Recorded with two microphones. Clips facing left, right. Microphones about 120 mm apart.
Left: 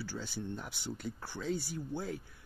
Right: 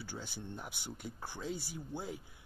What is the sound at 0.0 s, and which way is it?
Speech, 15° right (ahead or behind).